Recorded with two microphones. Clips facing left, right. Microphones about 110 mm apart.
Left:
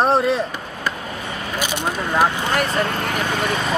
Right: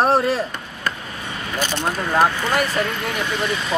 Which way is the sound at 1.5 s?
10° left (ahead or behind).